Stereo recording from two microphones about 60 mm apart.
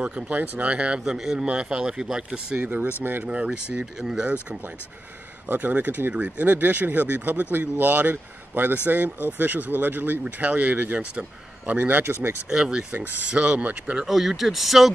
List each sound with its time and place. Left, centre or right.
0.0 s speech: right
3.0 s speech: right
3.3 s speech: centre
5.5 s a man's voice: right
12.4 s speech: centre
12.9 s a man's voice: right
13.3 s a man's voice: centre
14.0 s speech: centre